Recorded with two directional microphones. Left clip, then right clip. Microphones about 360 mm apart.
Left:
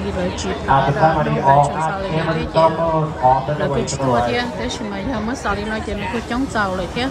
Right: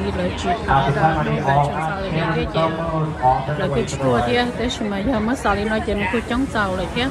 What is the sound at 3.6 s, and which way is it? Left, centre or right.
Speech, centre.